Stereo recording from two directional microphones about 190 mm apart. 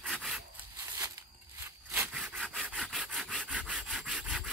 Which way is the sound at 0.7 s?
15° right (ahead or behind).